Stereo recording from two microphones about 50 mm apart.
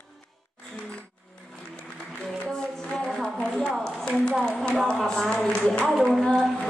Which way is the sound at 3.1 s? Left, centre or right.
Centre.